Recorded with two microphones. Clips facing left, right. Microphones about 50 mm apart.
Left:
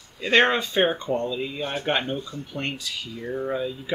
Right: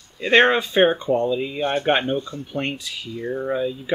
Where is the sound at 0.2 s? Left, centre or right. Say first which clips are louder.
Right 4 dB; centre.